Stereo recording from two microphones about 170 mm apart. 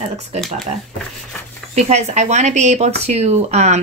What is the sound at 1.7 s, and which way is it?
A woman's voice, 40° right (ahead or behind).